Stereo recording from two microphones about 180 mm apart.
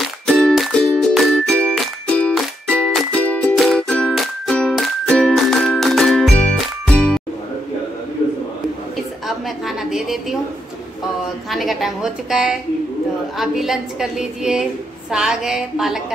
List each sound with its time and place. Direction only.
0.3 s music: centre (ahead or behind)
9.7 s a sound: centre (ahead or behind)
11.5 s a woman's voice: centre (ahead or behind)